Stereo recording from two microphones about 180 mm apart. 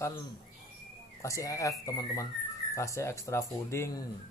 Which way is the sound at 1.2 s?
15° left (ahead or behind).